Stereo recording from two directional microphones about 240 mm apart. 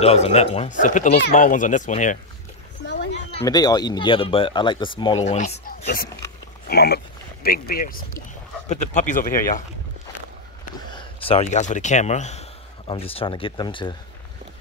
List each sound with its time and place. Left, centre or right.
0.0 s speech: left
6.7 s speech: left
10.9 s speech: left